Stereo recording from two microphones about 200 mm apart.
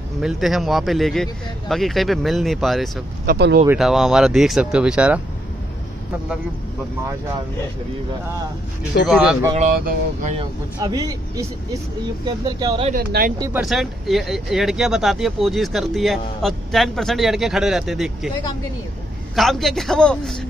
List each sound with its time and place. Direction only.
0.2 s speech: centre (ahead or behind)
3.3 s speech: 50° right (ahead or behind)
3.6 s speech: centre (ahead or behind)
9.0 s speech: centre (ahead or behind)
9.6 s speech: 40° right (ahead or behind)
10.4 s speech: 20° right (ahead or behind)
12.9 s speech: 45° right (ahead or behind)
13.6 s speech: centre (ahead or behind)
19.3 s speech: centre (ahead or behind)